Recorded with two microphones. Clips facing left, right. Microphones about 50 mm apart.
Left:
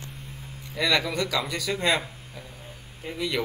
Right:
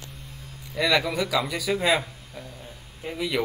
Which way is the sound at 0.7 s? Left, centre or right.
Centre.